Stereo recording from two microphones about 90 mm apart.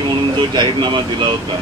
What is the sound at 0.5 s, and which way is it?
Speech, 55° right (ahead or behind).